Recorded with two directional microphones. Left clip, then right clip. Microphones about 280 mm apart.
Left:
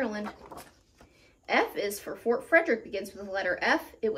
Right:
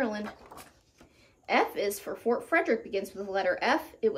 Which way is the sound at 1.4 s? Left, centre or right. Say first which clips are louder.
Even; centre.